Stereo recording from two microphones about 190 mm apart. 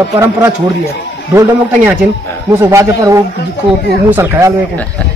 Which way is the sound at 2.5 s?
15° right (ahead or behind).